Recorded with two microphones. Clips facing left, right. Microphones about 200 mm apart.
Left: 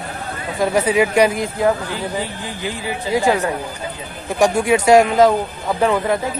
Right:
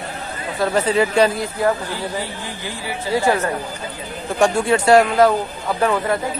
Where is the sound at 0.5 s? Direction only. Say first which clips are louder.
Left 2 dB; 15° left (ahead or behind).